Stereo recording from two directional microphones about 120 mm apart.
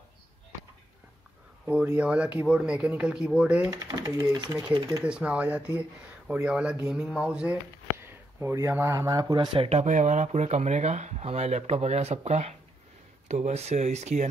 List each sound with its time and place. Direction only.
1.7 s speech: 10° right (ahead or behind)
3.8 s speech: 30° right (ahead or behind)
5.0 s speech: 10° right (ahead or behind)
8.0 s speech: 20° right (ahead or behind)
9.6 s speech: 65° right (ahead or behind)